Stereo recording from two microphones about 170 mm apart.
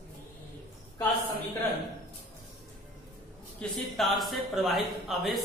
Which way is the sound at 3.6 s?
Centre (ahead or behind).